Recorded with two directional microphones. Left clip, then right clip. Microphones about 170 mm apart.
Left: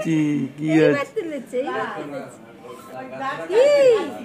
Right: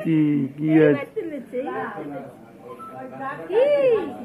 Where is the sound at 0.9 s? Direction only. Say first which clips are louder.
Left 3 dB; 90° left.